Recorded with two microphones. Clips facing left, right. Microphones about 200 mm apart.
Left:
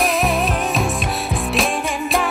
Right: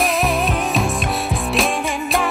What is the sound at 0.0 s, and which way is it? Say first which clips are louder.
Music: even; centre (ahead or behind).